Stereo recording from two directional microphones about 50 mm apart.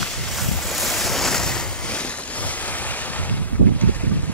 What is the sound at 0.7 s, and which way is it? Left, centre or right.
Waves, centre.